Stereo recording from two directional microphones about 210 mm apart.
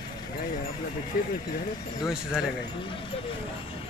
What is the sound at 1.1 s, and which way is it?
Speech, 40° left (ahead or behind).